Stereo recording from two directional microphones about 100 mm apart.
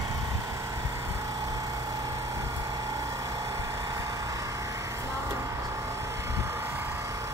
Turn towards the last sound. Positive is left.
turn(degrees=-25)  # may be behind; listen again after turning